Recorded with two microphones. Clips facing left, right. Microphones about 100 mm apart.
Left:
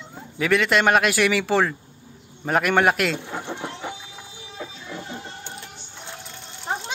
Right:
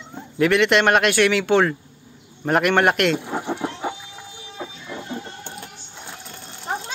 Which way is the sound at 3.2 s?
15° right (ahead or behind).